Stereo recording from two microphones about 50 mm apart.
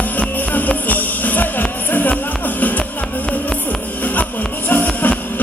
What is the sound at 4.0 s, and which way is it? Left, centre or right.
Music, left.